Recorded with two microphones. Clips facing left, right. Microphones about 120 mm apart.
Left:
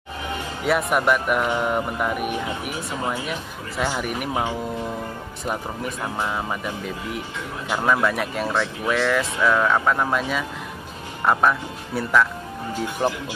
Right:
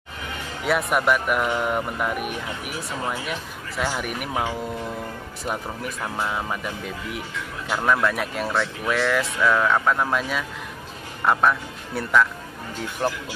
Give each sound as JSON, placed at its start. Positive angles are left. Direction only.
{"t": 0.7, "sound": "speech", "side_deg": 0}
{"t": 4.3, "sound": "speech", "side_deg": 15}
{"t": 5.4, "sound": "speech", "side_deg": 0}